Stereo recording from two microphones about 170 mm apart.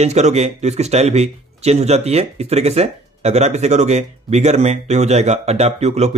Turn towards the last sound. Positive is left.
turn(degrees=-40)  # may be behind; listen again after turning